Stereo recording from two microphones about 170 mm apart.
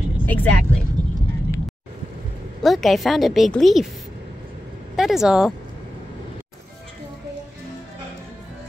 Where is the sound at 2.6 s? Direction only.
Centre (ahead or behind).